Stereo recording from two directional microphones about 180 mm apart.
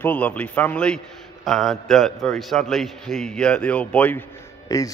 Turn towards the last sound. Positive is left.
turn(degrees=15)  # may be behind; listen again after turning